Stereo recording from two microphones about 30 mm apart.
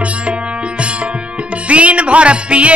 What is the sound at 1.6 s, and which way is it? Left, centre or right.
Music, right.